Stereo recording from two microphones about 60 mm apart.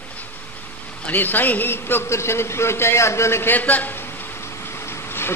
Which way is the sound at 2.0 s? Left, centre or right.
Left.